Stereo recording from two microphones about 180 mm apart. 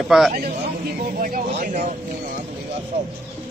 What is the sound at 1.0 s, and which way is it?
Speech, 50° right (ahead or behind).